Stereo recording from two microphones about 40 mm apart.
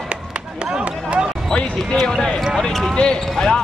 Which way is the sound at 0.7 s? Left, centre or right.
Right.